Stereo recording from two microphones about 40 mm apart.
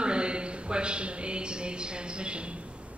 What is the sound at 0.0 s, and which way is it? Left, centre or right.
A woman's voice, right.